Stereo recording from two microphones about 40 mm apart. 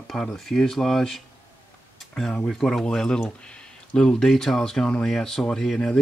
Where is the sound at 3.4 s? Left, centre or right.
Left.